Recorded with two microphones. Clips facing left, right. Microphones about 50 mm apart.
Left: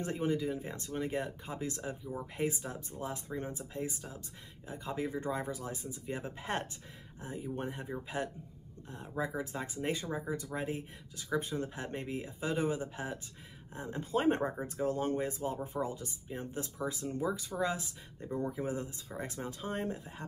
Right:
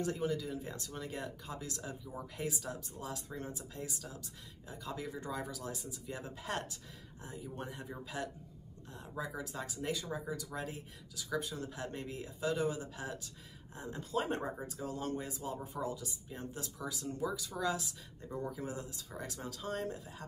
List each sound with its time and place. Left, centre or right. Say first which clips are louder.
0.0 s speech: left 2 dB; left
9.1 s speech: left 5 dB; centre
9.4 s speech: left 4 dB; left